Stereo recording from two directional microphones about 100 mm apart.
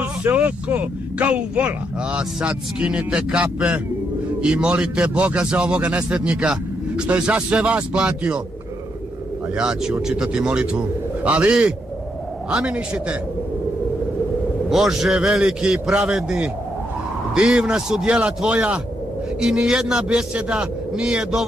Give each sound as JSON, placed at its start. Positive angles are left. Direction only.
{"t": 0.0, "sound": "a man's voice", "side_deg": -15}
{"t": 9.6, "sound": "a man's voice", "side_deg": -10}
{"t": 14.7, "sound": "a man's voice", "side_deg": -5}